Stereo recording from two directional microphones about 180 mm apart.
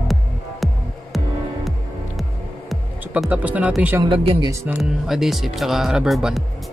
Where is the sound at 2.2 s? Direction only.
Centre (ahead or behind).